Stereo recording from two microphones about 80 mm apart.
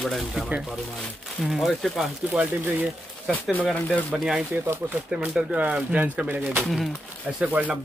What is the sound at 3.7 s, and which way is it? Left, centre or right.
Speech, centre.